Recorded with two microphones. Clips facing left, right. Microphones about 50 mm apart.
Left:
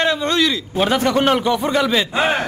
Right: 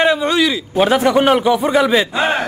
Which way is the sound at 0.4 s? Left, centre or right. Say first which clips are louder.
Right 3 dB; centre.